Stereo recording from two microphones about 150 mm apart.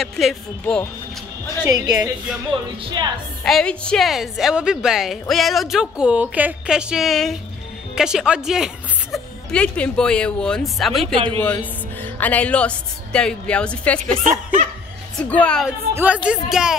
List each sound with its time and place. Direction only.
0.0 s speech: centre (ahead or behind)
1.7 s a woman's voice: 25° right (ahead or behind)
3.4 s a woman's voice: 5° left (ahead or behind)
14.2 s speech: 55° right (ahead or behind)
15.2 s a woman's voice: 10° left (ahead or behind)
15.9 s speech: 10° right (ahead or behind)